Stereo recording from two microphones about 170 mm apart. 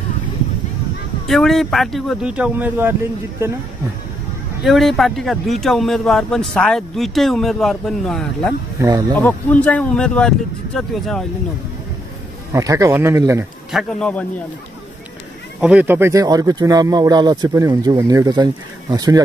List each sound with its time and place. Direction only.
1.2 s speech: centre (ahead or behind)
4.6 s speech: centre (ahead or behind)
8.7 s speech: 20° right (ahead or behind)
9.1 s speech: 10° left (ahead or behind)
12.5 s speech: 20° right (ahead or behind)
13.7 s speech: centre (ahead or behind)
15.6 s speech: 10° right (ahead or behind)